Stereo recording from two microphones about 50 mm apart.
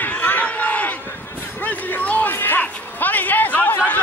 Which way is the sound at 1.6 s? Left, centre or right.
Left.